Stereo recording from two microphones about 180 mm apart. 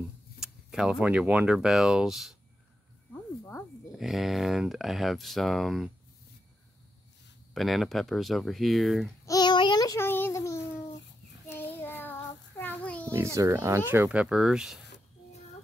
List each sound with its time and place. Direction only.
0.4 s speech: 5° right (ahead or behind)
3.9 s speech: centre (ahead or behind)
7.5 s speech: centre (ahead or behind)
9.2 s a sound: 20° left (ahead or behind)
11.5 s child singing: 10° left (ahead or behind)
13.1 s speech: 15° right (ahead or behind)